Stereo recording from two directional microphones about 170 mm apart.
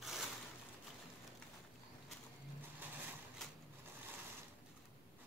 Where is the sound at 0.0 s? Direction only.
Centre (ahead or behind).